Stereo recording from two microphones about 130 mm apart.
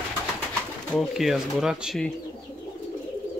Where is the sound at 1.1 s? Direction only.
Centre (ahead or behind).